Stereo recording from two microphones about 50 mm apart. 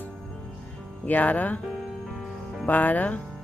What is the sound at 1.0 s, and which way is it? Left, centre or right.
Speech, left.